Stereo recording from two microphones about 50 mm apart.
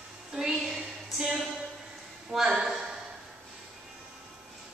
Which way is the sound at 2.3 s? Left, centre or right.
Centre.